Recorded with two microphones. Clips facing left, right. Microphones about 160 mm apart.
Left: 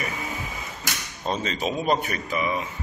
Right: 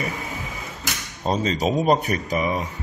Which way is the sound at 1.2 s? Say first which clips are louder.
Right 5 dB; 35° right (ahead or behind).